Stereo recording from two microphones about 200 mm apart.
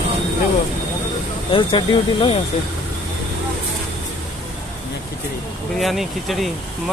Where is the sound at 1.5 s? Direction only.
25° left (ahead or behind).